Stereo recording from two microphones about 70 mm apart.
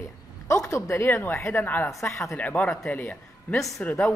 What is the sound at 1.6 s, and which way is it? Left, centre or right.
Speech, left.